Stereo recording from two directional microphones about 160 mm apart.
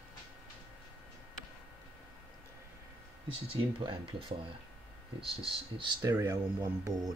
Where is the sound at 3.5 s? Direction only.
35° right (ahead or behind).